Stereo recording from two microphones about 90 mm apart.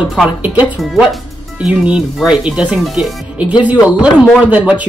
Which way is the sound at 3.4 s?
15° right (ahead or behind).